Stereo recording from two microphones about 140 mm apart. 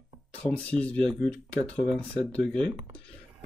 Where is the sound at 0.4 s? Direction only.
10° left (ahead or behind).